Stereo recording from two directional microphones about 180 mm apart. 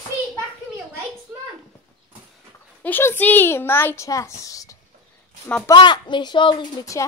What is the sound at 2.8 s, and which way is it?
A child's voice, 10° left (ahead or behind).